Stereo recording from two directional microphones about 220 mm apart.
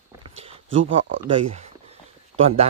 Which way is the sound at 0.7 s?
60° right (ahead or behind).